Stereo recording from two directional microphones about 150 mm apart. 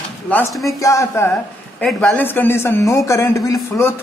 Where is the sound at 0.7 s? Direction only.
20° left (ahead or behind).